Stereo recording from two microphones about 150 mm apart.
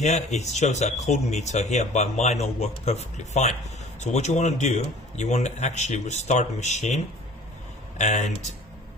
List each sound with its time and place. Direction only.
0.0 s speech: 50° left (ahead or behind)
8.0 s speech: 55° left (ahead or behind)